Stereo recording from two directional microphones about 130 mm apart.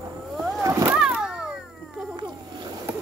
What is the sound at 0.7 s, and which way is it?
Vehicle, 25° right (ahead or behind).